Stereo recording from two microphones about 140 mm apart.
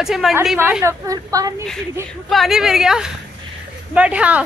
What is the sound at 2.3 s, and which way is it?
A woman's voice, centre (ahead or behind).